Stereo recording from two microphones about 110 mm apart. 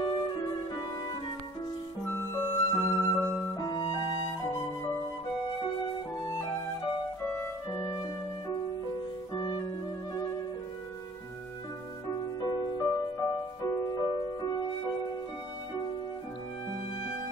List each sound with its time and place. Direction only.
0.0 s music: 40° left (ahead or behind)
2.0 s music: 20° left (ahead or behind)
2.8 s music: 30° left (ahead or behind)
5.5 s music: 45° left (ahead or behind)
9.3 s music: 40° left (ahead or behind)
12.4 s music: 40° left (ahead or behind)